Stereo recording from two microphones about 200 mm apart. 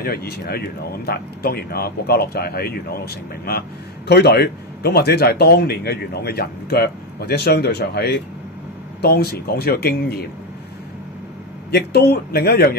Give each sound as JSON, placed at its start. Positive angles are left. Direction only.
{"t": 0.0, "sound": "speech", "side_deg": 50}
{"t": 11.7, "sound": "speech", "side_deg": 55}